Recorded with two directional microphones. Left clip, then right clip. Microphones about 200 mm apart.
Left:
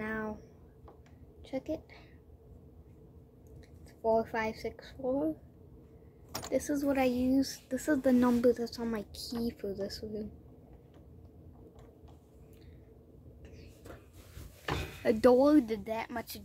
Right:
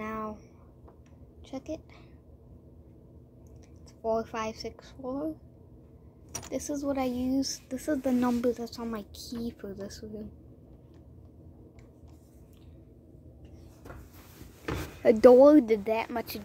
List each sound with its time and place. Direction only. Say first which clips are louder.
0.0 s a sound: right 1 dB; 5° right (ahead or behind)
1.5 s a woman's voice: left 1 dB; 5° right (ahead or behind)
4.0 s a woman's voice: left 1 dB; 10° right (ahead or behind)
6.5 s a woman's voice: left 1 dB; 5° right (ahead or behind)
15.0 s a woman's voice: right 8 dB; 10° right (ahead or behind)